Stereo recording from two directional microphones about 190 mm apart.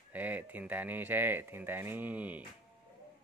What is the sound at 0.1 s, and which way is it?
Speech, 10° right (ahead or behind).